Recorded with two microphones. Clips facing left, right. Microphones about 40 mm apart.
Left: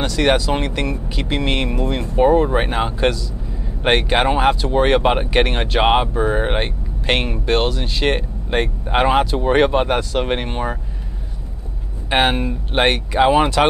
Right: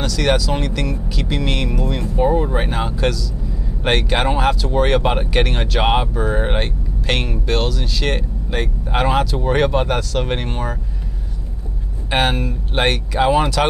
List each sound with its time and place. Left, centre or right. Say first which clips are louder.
0.0 s speech: left 2 dB; left
12.1 s speech: left 2 dB; centre